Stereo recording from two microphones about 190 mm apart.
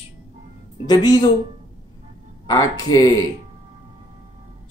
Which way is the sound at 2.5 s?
20° left (ahead or behind).